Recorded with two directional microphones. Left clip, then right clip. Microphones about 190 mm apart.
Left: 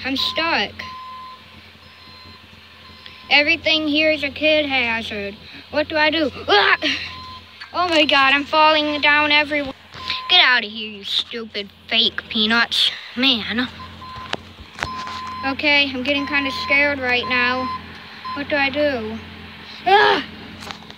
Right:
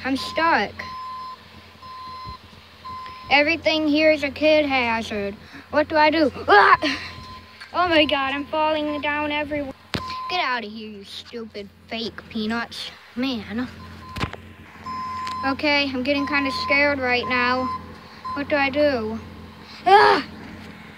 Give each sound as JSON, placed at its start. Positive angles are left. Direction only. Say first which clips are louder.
{"t": 0.0, "sound": "speech", "louder": "left 1 dB", "side_deg": -10}
{"t": 3.3, "sound": "speech", "louder": "left 3 dB", "side_deg": -10}
{"t": 7.7, "sound": "speech", "louder": "left 3 dB", "side_deg": 0}
{"t": 10.0, "sound": "speech", "louder": "left 10 dB", "side_deg": -10}
{"t": 15.4, "sound": "speech", "louder": "left 4 dB", "side_deg": -10}